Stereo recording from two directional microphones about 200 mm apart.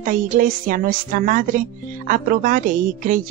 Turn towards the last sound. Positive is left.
turn(degrees=-40)  # may be behind; listen again after turning